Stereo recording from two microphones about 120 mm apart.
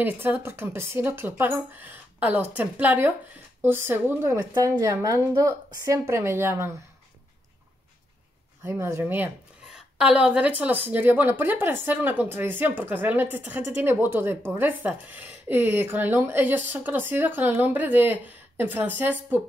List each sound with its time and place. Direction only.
0.0 s a woman's voice: 15° right (ahead or behind)
8.6 s a woman's voice: 20° right (ahead or behind)
9.8 s a woman's voice: 5° right (ahead or behind)